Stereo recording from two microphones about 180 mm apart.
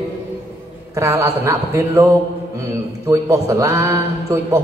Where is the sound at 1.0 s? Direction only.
15° right (ahead or behind).